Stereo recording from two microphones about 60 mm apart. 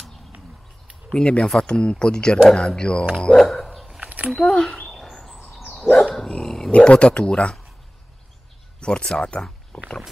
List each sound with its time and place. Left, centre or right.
1.1 s speech: centre
3.2 s a sound: centre
4.0 s a sound: right
4.5 s speech: centre
5.1 s bird: centre
5.7 s dog: centre
6.7 s speech: centre
8.7 s speech: centre